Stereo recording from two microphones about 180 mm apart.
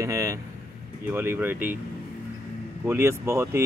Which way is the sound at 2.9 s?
15° right (ahead or behind).